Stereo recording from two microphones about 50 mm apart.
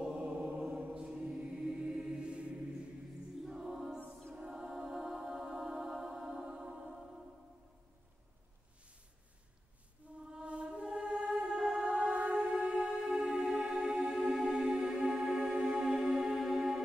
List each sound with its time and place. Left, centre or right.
0.2 s music: right
0.6 s choir: right
1.0 s music: centre
10.2 s music: centre